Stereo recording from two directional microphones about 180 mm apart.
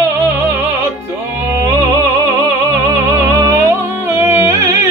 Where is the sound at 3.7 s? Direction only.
15° right (ahead or behind).